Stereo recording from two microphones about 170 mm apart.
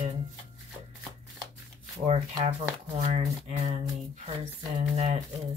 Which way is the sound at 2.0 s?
35° right (ahead or behind).